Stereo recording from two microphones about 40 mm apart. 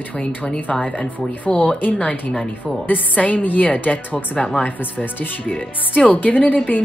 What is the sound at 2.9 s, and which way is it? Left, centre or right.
A woman's voice, left.